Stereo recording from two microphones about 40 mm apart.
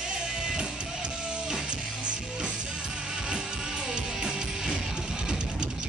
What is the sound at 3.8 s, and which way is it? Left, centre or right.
Music, centre.